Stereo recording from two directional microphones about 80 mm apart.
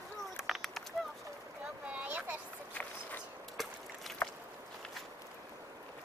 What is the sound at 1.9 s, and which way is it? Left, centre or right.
Speech, centre.